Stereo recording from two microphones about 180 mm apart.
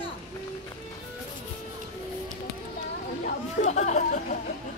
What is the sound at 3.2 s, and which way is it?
Chatter, 40° left (ahead or behind).